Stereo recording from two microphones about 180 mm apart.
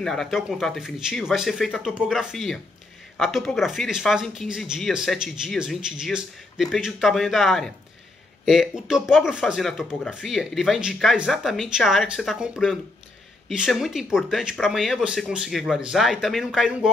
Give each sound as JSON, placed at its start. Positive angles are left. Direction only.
{"t": 0.0, "sound": "speech", "side_deg": 0}